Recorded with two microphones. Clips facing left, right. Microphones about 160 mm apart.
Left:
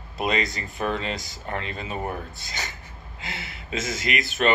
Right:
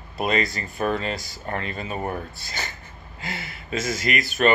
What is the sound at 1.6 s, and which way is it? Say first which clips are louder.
Speech: right 2 dB; 50° right (ahead or behind).